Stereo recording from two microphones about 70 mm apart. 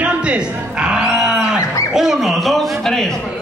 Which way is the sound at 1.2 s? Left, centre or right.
Centre.